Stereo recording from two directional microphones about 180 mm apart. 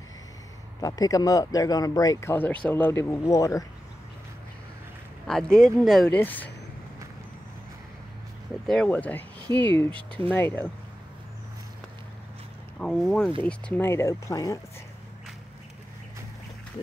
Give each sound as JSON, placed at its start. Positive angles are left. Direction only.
{"t": 0.7, "sound": "speech", "side_deg": 20}
{"t": 5.2, "sound": "speech", "side_deg": 5}
{"t": 8.6, "sound": "speech", "side_deg": 5}
{"t": 12.7, "sound": "speech", "side_deg": 5}